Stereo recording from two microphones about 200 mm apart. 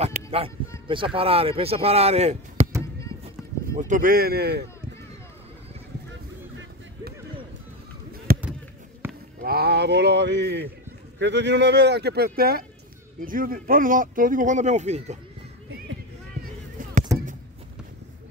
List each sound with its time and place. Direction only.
0.0 s a sound: 30° right (ahead or behind)
0.8 s speech: 25° right (ahead or behind)
3.7 s speech: 40° right (ahead or behind)
8.3 s chop: 45° right (ahead or behind)
9.0 s a sound: 10° right (ahead or behind)
9.4 s speech: 50° right (ahead or behind); by 15.1 s 35° right (ahead or behind)